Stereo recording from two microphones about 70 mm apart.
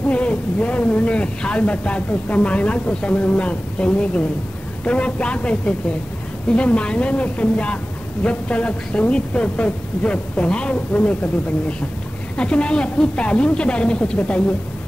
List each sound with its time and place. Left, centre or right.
0.1 s a woman's voice: centre
12.4 s a woman's voice: centre